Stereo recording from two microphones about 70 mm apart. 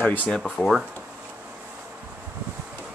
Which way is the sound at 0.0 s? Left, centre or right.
Left.